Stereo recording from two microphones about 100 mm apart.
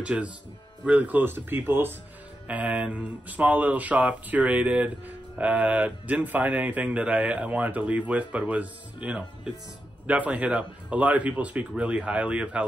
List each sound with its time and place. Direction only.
0.0 s speech: 10° right (ahead or behind)